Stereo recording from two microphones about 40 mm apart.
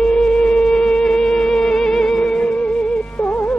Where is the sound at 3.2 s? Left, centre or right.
Left.